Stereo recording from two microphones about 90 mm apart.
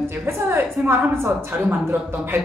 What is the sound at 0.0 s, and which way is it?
A woman's voice, 25° right (ahead or behind).